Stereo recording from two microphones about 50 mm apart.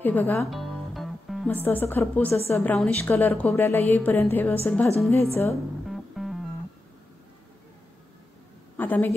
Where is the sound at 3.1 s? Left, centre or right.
Left.